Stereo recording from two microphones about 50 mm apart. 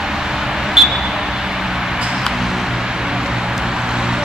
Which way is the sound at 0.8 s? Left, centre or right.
Centre.